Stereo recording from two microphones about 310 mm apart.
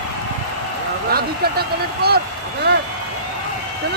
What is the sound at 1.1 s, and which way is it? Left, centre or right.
Speech, right.